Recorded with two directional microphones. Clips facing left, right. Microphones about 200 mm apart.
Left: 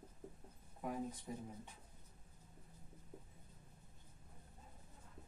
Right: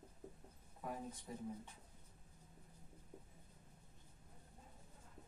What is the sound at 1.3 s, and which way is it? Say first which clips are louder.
Speech: left 3 dB; 10° left (ahead or behind).